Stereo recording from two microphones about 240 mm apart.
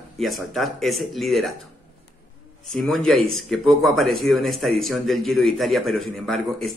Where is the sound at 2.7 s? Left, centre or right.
Centre.